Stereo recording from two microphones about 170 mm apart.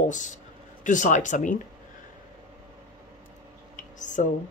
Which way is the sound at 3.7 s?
45° left (ahead or behind).